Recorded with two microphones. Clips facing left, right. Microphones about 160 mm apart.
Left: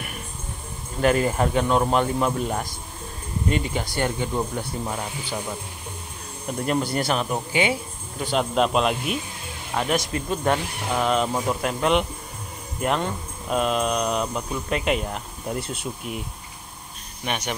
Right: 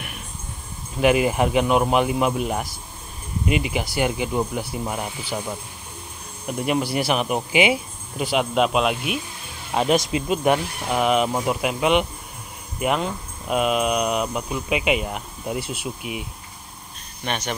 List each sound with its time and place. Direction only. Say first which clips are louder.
1.0 s speech: right 2 dB; 10° right (ahead or behind)
6.4 s speech: right 1 dB; 10° right (ahead or behind)
9.8 s speech: right 4 dB; 20° right (ahead or behind)
17.2 s speech: right 1 dB; 10° left (ahead or behind)